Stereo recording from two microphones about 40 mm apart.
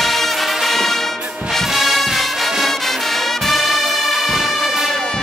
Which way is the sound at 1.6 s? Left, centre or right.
Centre.